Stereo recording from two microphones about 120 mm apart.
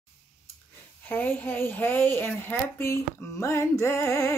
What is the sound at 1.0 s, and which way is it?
Speech, 15° left (ahead or behind).